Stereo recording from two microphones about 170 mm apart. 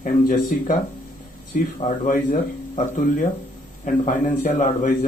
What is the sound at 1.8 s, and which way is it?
Speech, 50° left (ahead or behind).